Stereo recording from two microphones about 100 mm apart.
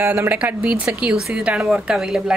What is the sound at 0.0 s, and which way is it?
A woman's voice, 20° right (ahead or behind).